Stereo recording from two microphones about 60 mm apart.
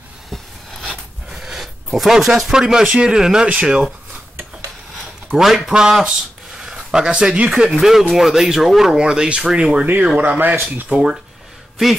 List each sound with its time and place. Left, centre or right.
0.3 s a sound: centre
1.3 s speech: centre
5.3 s speech: centre
10.1 s speech: right
10.9 s speech: centre